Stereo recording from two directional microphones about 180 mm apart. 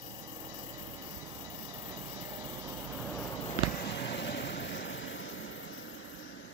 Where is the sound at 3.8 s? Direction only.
70° left (ahead or behind); by 6.5 s 90° left.